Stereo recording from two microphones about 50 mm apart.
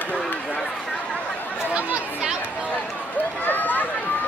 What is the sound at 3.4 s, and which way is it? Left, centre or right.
Run, left.